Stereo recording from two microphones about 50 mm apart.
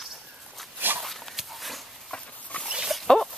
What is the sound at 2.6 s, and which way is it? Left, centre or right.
Dog, centre.